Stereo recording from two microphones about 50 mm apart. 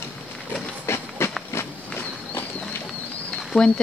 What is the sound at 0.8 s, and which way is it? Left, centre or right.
Train, left.